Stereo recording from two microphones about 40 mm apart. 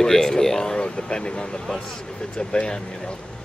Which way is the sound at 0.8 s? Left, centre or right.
Left.